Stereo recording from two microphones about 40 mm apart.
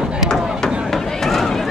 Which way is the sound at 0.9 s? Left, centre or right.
Centre.